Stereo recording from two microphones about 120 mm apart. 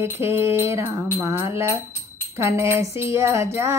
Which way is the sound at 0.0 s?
20° right (ahead or behind).